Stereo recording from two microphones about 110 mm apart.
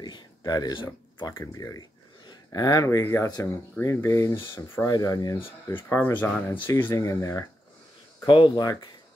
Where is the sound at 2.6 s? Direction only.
30° left (ahead or behind).